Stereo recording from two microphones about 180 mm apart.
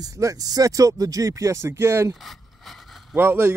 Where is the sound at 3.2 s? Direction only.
10° right (ahead or behind).